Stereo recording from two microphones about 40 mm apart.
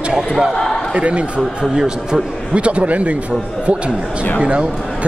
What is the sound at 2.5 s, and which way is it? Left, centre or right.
Speech, right.